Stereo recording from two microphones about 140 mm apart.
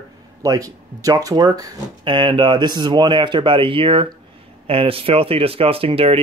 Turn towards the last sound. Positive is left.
turn(degrees=-45)  # may be behind; listen again after turning